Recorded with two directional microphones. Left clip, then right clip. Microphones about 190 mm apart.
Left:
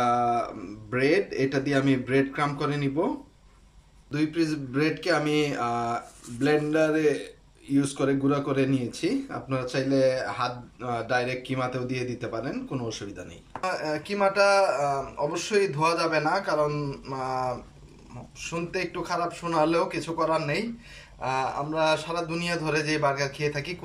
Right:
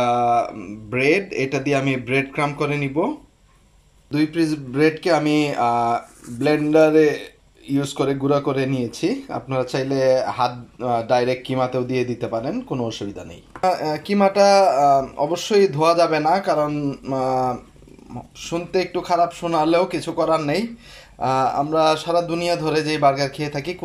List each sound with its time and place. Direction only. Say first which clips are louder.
0.0 s speech: right 6 dB; 20° right (ahead or behind)
4.1 s speech: right 6 dB; 15° right (ahead or behind)